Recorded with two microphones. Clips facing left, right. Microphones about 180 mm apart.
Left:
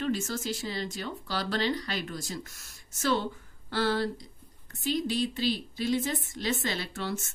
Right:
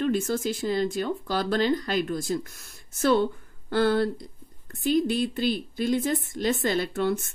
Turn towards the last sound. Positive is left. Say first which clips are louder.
# right 9 dB
turn(degrees=-55)  # may be behind; listen again after turning